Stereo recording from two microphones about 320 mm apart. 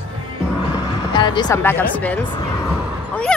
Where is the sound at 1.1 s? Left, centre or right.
Centre.